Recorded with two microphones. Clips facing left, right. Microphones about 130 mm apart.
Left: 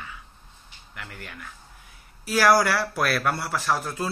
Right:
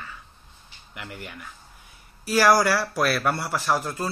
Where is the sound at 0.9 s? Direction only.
5° right (ahead or behind).